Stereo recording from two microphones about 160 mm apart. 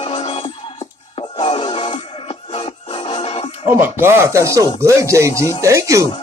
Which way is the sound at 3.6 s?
15° right (ahead or behind).